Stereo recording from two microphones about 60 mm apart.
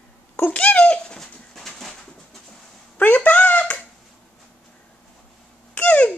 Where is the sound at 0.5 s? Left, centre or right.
Left; by 2.4 s centre.